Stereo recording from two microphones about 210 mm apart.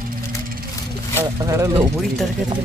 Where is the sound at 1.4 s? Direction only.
15° right (ahead or behind).